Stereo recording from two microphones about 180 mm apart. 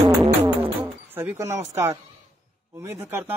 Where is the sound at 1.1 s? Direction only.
15° right (ahead or behind).